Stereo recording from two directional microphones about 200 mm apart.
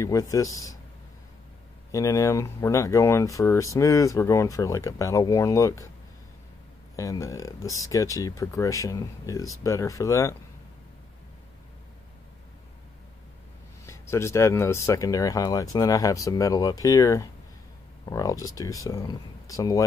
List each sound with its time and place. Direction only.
0.0 s speech: 15° left (ahead or behind)
1.9 s speech: 15° left (ahead or behind)
7.0 s speech: 15° left (ahead or behind)
13.8 s speech: 15° left (ahead or behind)